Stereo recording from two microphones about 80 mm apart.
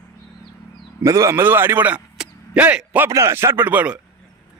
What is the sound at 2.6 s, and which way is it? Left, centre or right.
Speech, centre.